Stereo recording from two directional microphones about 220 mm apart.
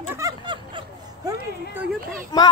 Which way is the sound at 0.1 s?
20° right (ahead or behind).